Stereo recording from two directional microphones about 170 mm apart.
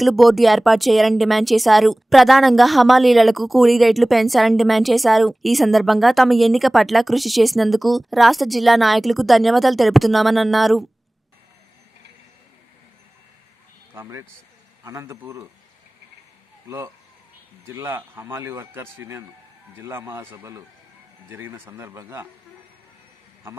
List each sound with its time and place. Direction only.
0.0 s speech: centre (ahead or behind)
13.9 s speech: 15° right (ahead or behind)
16.6 s speech: 15° right (ahead or behind)